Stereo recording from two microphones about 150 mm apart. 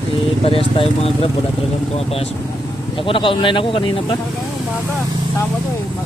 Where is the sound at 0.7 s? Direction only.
40° left (ahead or behind).